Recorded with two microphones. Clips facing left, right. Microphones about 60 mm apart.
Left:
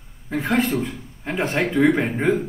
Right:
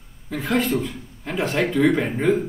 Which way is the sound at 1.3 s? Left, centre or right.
Centre.